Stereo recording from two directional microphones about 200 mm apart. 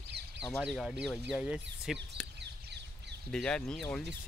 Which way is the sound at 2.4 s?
60° right (ahead or behind).